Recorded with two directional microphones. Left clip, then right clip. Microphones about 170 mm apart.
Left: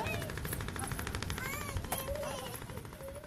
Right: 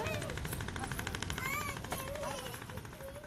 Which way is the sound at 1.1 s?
30° right (ahead or behind).